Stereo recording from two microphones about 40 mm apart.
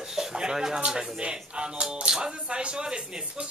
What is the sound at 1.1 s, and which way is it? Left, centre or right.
Speech, right.